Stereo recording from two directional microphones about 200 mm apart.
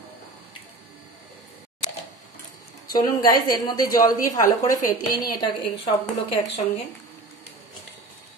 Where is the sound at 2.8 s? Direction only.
20° left (ahead or behind).